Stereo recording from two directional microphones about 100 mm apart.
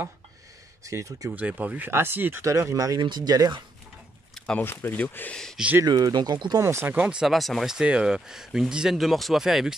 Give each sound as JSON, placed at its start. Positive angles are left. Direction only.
{"t": 0.8, "sound": "speech", "side_deg": -30}
{"t": 1.3, "sound": "speech", "side_deg": -15}
{"t": 2.4, "sound": "speech", "side_deg": -35}
{"t": 4.4, "sound": "a sound", "side_deg": 10}
{"t": 4.6, "sound": "speech", "side_deg": 20}
{"t": 5.9, "sound": "speech", "side_deg": -45}
{"t": 6.6, "sound": "speech", "side_deg": -25}